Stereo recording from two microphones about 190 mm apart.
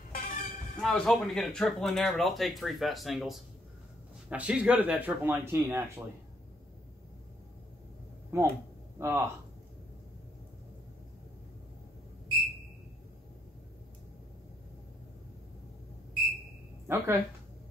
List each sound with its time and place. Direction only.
0.1 s vehicle: 45° left (ahead or behind)
0.7 s speech: 5° left (ahead or behind)
8.3 s speech: 15° right (ahead or behind)
16.8 s speech: 15° right (ahead or behind)